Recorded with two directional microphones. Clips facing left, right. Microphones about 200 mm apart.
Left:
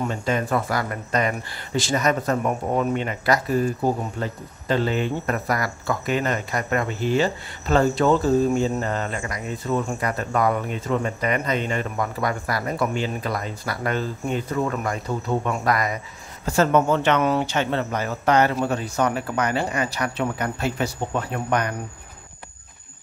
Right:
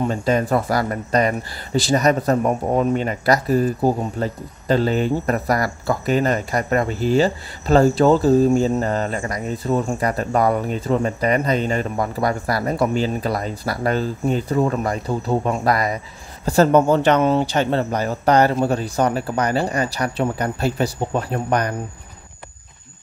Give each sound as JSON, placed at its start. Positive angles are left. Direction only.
{"t": 0.1, "sound": "speech", "side_deg": -35}